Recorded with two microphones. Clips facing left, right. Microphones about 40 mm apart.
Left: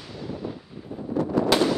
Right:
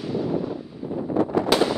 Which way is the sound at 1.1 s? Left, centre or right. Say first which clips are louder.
Right 1 dB; right.